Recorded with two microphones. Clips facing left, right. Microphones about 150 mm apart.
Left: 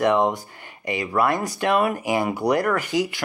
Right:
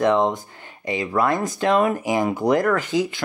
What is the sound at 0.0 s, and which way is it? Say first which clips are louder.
Speech: right 1 dB; 10° left (ahead or behind).